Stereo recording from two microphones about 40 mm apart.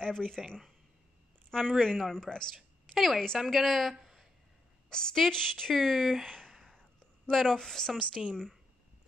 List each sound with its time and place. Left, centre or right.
0.0 s speech: centre
1.5 s speech: centre
2.5 s a sound: centre
3.3 s a woman's voice: centre
3.9 s a sound: centre
4.8 s speech: centre
6.8 s whispering: centre
8.2 s speech: centre